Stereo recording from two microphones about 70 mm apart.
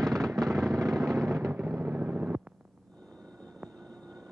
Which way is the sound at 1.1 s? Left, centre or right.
Centre.